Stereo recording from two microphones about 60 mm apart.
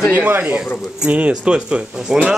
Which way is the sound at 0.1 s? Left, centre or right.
Right.